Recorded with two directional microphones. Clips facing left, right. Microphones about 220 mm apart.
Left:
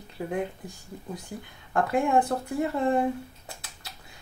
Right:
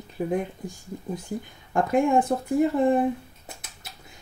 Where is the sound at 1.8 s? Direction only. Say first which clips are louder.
Right 3 dB; 20° right (ahead or behind).